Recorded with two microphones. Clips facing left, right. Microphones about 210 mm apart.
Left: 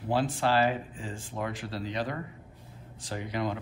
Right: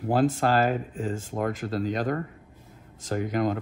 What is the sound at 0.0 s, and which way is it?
Speech, 45° right (ahead or behind).